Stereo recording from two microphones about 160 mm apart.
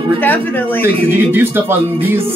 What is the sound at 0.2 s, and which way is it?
Speech, 10° left (ahead or behind).